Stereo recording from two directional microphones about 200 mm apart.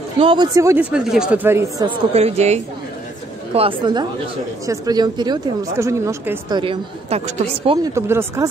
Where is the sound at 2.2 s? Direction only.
30° right (ahead or behind).